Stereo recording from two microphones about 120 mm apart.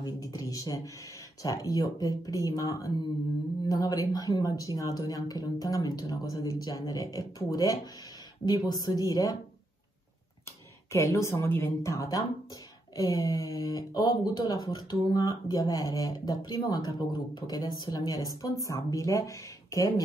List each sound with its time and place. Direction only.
0.0 s speech: 30° left (ahead or behind)
10.9 s speech: 25° left (ahead or behind)